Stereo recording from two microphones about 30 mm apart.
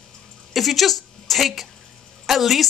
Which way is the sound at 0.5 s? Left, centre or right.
Centre.